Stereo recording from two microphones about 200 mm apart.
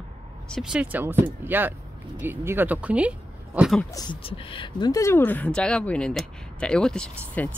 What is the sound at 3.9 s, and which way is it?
Speech, 25° left (ahead or behind).